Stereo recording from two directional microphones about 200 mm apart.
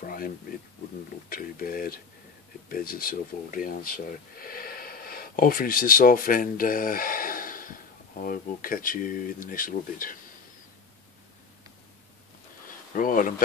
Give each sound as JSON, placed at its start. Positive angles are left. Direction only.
{"t": 0.0, "sound": "speech", "side_deg": 45}
{"t": 1.3, "sound": "speech", "side_deg": 45}
{"t": 12.9, "sound": "speech", "side_deg": 40}